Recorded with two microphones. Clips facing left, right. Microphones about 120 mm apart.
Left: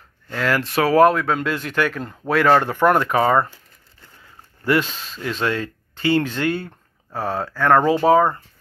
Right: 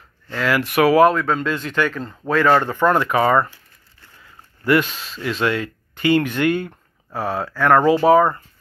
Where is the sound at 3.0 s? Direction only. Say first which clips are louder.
Even; 40° left (ahead or behind).